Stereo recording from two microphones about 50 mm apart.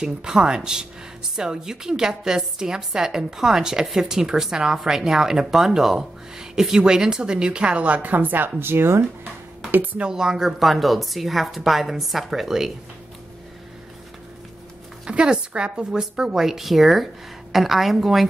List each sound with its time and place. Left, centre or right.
0.0 s a woman's voice: centre; by 9.3 s right
9.9 s a woman's voice: centre
15.0 s a woman's voice: centre